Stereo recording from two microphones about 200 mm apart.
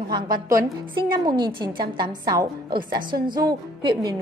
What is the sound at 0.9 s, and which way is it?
A woman's voice, 25° right (ahead or behind).